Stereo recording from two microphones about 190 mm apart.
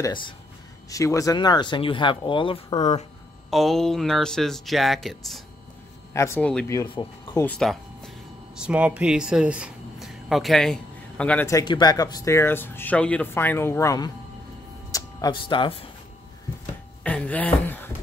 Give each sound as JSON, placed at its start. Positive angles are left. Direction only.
{"t": 0.0, "sound": "speech", "side_deg": 25}
{"t": 3.4, "sound": "speech", "side_deg": 0}
{"t": 6.1, "sound": "speech", "side_deg": 15}
{"t": 7.5, "sound": "music", "side_deg": 0}
{"t": 8.5, "sound": "speech", "side_deg": -5}
{"t": 11.5, "sound": "speech", "side_deg": 25}
{"t": 17.0, "sound": "a sound", "side_deg": 5}